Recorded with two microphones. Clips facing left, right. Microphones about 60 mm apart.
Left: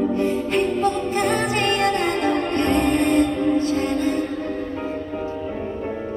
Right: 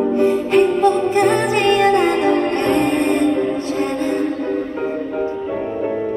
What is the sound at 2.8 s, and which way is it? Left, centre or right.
Music, right.